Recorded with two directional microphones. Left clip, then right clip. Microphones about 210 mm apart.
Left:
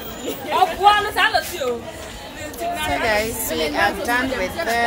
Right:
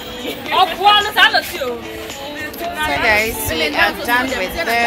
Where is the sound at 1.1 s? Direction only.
15° left (ahead or behind).